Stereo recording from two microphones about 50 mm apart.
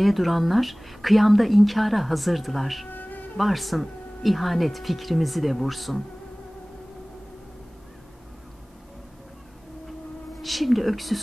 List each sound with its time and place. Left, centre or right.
0.0 s speech: centre
2.9 s music: left
3.3 s speech: centre
10.4 s speech: centre